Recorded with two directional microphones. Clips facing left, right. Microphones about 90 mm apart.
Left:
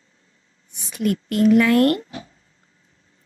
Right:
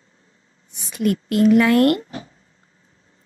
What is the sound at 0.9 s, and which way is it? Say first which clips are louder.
A woman's voice: right 2 dB; 25° right (ahead or behind).